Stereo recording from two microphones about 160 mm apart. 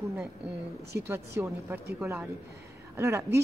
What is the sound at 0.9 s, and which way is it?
A woman's voice, 15° right (ahead or behind).